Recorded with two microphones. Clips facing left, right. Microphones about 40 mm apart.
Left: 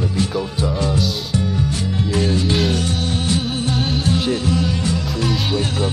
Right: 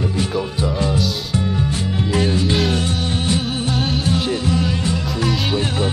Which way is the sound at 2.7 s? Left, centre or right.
Right.